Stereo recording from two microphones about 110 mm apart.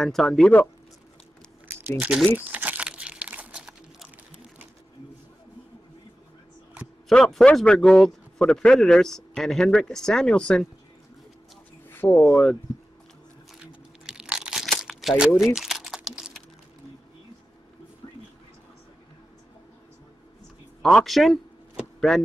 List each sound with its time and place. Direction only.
0.0 s a man's voice: 5° left (ahead or behind)
1.7 s a sound: 20° right (ahead or behind)
2.3 s crumpling: 15° right (ahead or behind)
7.1 s a man's voice: 5° left (ahead or behind)
11.9 s speech: 20° left (ahead or behind)
14.0 s crumpling: 5° right (ahead or behind)
20.8 s a man's voice: centre (ahead or behind)